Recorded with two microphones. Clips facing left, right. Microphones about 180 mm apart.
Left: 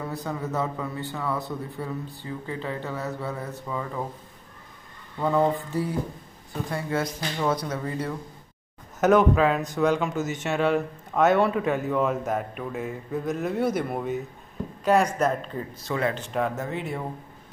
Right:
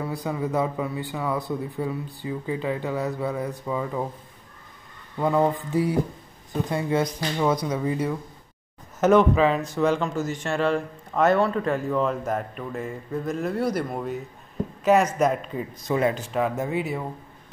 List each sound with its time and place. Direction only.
0.1 s a man's voice: 10° right (ahead or behind)
5.2 s a man's voice: 15° right (ahead or behind)
9.0 s a man's voice: centre (ahead or behind)
15.1 s a man's voice: 10° right (ahead or behind)
16.2 s a man's voice: 5° right (ahead or behind)